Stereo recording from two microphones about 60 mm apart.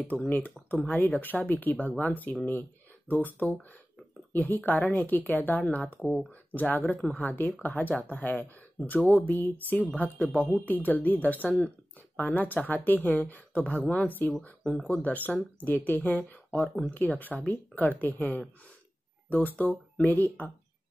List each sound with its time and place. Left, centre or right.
0.0 s speech: left